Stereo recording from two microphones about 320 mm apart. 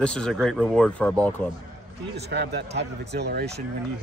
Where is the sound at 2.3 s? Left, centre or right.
Right.